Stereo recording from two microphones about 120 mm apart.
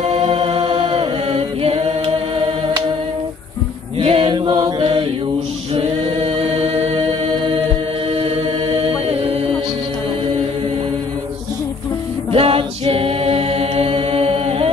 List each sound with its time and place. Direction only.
0.0 s a capella: 50° right (ahead or behind)
4.0 s chant: 50° right (ahead or behind)
5.8 s a capella: 55° right (ahead or behind)
8.8 s mantra: 55° right (ahead or behind)
12.3 s a capella: 50° right (ahead or behind)